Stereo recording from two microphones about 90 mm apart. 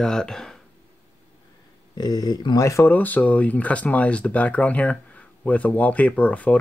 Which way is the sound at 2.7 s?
25° left (ahead or behind).